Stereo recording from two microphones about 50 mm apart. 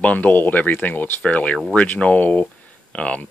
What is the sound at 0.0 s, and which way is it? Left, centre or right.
Speech, left.